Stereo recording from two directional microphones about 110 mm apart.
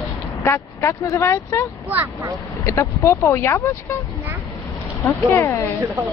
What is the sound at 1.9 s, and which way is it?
Speech, 25° right (ahead or behind).